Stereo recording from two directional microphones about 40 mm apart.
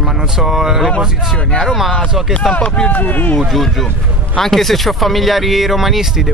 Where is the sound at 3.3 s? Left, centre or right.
Centre.